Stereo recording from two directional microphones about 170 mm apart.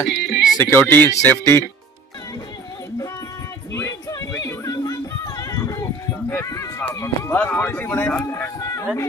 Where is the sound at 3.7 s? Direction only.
20° left (ahead or behind).